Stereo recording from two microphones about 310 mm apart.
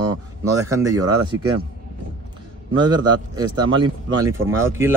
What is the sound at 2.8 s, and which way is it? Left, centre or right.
Speech, centre.